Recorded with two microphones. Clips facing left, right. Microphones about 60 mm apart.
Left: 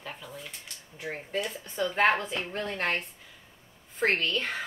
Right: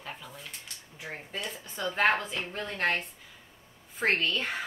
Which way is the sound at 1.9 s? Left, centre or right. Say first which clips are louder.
Left 1 dB; centre.